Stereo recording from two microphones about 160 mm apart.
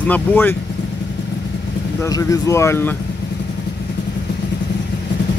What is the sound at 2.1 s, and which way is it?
Speech, 20° left (ahead or behind).